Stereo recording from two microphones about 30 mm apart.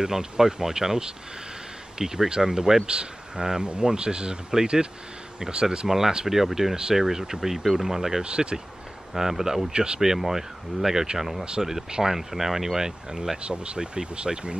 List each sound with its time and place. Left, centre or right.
0.0 s speech: right
5.4 s speech: right
5.9 s speech: centre
8.2 s speech: right
9.1 s speech: centre
9.7 s speech: right
9.9 s speech: centre
13.4 s speech: right